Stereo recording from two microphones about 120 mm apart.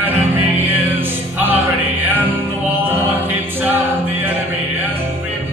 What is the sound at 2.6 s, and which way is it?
A capella, 15° right (ahead or behind).